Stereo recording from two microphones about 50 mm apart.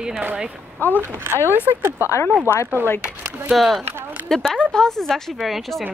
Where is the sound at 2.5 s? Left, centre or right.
Left.